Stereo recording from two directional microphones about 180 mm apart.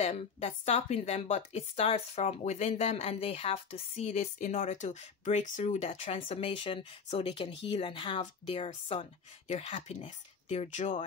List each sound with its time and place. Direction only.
0.0 s a woman's voice: 35° left (ahead or behind)
8.2 s a woman's voice: 40° left (ahead or behind)